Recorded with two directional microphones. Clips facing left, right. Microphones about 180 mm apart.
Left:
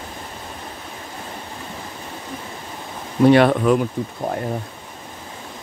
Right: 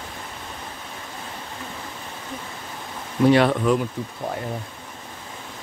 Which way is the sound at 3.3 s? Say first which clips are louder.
Left 3 dB; 60° left (ahead or behind).